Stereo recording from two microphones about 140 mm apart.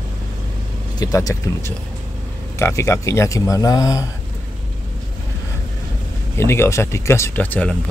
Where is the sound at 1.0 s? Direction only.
25° left (ahead or behind).